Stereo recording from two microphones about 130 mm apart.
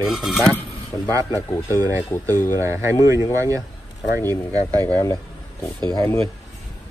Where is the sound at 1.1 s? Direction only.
25° right (ahead or behind).